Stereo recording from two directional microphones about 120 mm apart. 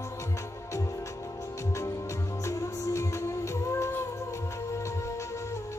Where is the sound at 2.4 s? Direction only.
25° left (ahead or behind).